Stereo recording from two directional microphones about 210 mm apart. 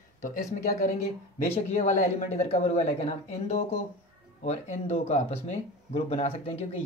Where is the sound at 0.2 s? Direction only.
35° left (ahead or behind).